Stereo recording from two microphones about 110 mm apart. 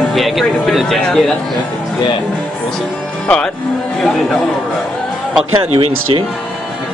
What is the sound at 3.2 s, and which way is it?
Speech, 10° left (ahead or behind).